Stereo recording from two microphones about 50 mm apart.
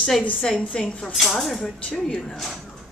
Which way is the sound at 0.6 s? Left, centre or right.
Centre.